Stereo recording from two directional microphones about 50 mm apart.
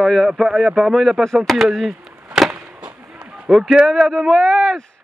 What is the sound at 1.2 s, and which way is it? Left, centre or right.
Speech, centre.